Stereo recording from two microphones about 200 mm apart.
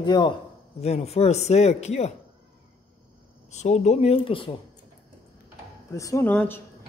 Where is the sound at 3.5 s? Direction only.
35° left (ahead or behind).